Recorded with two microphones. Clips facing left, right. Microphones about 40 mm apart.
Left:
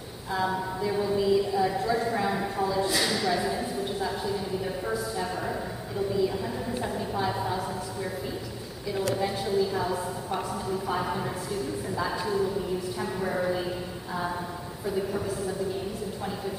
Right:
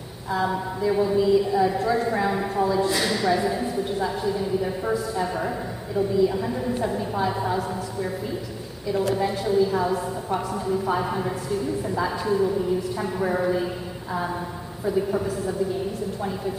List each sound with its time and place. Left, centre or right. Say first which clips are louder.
0.3 s a woman's voice: right 3 dB; centre
9.1 s a woman's voice: right 4 dB; centre
14.9 s a woman's voice: right 6 dB; centre